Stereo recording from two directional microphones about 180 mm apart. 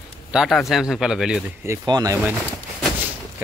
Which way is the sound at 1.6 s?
15° right (ahead or behind).